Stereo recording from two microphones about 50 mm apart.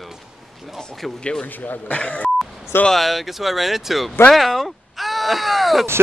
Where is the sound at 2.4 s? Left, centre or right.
Centre.